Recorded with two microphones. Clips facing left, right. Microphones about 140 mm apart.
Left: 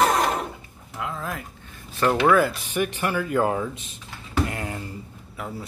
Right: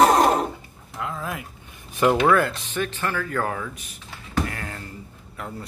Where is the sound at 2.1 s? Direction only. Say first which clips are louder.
Even; centre (ahead or behind); by 3.9 s 25° left (ahead or behind).